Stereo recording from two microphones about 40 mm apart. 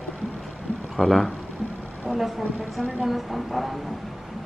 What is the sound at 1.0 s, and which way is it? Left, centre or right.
Speech, centre.